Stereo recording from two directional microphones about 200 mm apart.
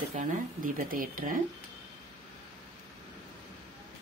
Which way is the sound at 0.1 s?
40° right (ahead or behind).